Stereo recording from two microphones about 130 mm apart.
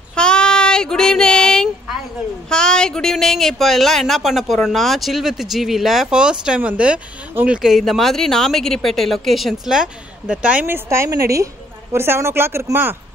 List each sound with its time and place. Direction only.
0.1 s child singing: 5° left (ahead or behind)
2.5 s a woman's voice: 5° left (ahead or behind); by 12.9 s 20° right (ahead or behind)